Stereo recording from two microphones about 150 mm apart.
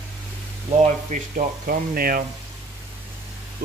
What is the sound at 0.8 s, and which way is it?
Speech, 55° right (ahead or behind).